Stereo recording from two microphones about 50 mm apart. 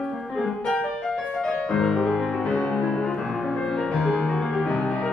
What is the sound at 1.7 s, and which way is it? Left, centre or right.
Music, centre.